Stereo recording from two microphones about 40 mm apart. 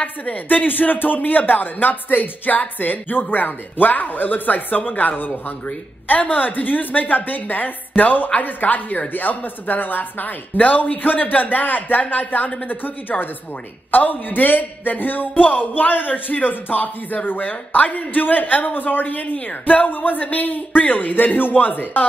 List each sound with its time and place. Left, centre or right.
0.0 s speech: left
13.1 s speech: left
13.9 s speech: left